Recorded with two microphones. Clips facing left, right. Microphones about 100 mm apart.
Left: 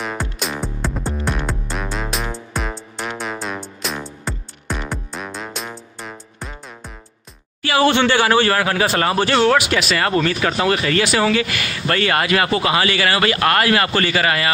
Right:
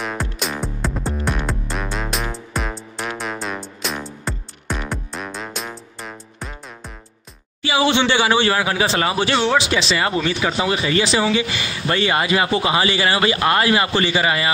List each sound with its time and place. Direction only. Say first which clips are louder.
0.0 s music: even; centre (ahead or behind)
7.6 s speech: left 2 dB; 20° right (ahead or behind)